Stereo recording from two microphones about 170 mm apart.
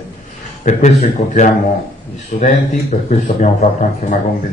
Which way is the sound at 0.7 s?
45° left (ahead or behind).